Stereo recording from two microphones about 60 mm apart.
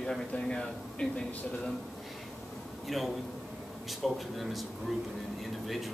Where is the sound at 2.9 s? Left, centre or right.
Centre.